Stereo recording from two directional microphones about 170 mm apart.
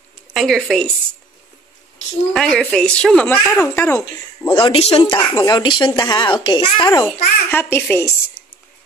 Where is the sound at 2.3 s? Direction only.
5° left (ahead or behind).